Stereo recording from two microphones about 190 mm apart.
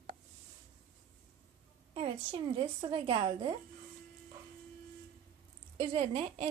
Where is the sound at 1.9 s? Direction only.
30° right (ahead or behind).